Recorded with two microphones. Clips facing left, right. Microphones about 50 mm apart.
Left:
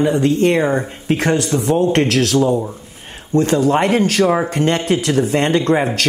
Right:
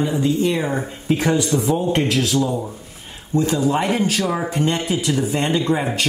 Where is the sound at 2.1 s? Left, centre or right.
Left.